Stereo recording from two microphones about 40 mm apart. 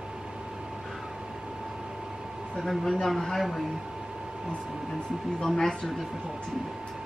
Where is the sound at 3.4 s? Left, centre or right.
Centre.